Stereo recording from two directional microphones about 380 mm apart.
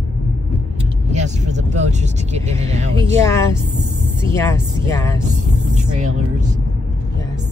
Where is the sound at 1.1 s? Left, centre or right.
Centre.